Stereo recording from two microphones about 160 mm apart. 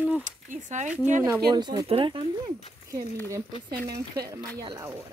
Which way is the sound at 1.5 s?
25° right (ahead or behind).